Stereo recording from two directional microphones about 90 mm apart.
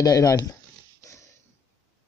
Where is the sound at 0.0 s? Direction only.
40° left (ahead or behind).